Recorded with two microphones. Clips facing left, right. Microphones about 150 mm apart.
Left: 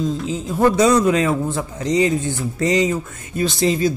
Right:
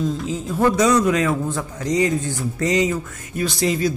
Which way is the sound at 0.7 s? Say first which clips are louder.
Left 2 dB; 30° left (ahead or behind).